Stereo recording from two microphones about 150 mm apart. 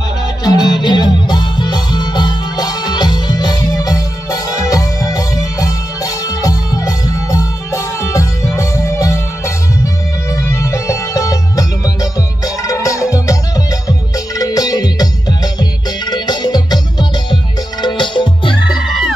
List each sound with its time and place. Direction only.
0.4 s music: 25° left (ahead or behind)
18.7 s music: 5° right (ahead or behind)